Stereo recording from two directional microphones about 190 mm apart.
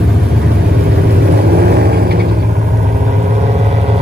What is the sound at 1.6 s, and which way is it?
Vehicle, 55° right (ahead or behind).